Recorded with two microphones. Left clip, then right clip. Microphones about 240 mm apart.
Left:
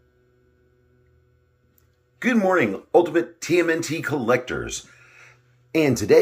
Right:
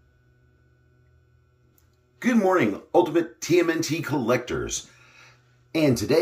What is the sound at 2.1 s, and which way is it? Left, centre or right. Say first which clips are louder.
Speech: left 2 dB; centre.